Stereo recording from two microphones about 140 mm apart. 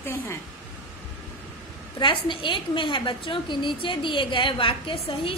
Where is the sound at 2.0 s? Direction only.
35° left (ahead or behind).